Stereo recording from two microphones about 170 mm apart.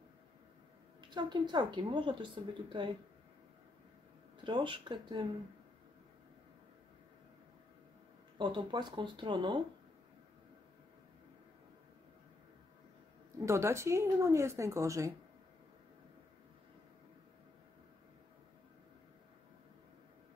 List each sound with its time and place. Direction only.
1.1 s a woman's voice: 25° right (ahead or behind)
4.5 s a woman's voice: 25° right (ahead or behind)
8.4 s a woman's voice: 30° right (ahead or behind)
13.5 s speech: 15° right (ahead or behind)